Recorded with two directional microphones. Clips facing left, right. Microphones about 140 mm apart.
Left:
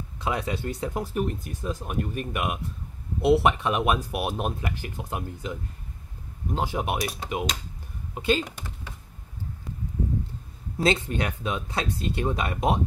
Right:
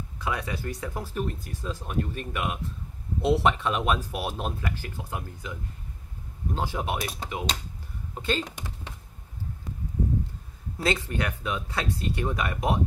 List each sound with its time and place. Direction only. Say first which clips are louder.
0.2 s speech: left 3 dB; 25° left (ahead or behind); by 8.5 s 10° left (ahead or behind)
10.8 s speech: left 3 dB; 20° left (ahead or behind)